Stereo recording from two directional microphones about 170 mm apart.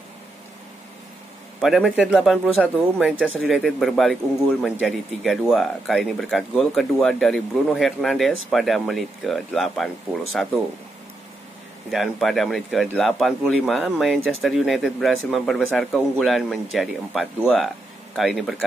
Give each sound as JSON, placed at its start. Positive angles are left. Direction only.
{"t": 1.6, "sound": "speech", "side_deg": 0}
{"t": 2.6, "sound": "speech", "side_deg": -10}
{"t": 11.9, "sound": "speech", "side_deg": 0}